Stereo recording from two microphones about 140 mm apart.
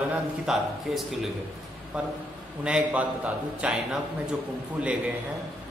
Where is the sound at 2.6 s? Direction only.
10° right (ahead or behind).